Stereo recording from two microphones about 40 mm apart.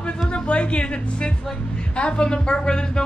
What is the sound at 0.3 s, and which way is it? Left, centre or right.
A woman's voice, left.